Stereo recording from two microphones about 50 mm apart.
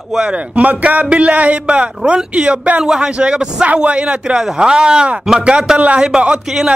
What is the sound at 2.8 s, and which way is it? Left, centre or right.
Speech, centre.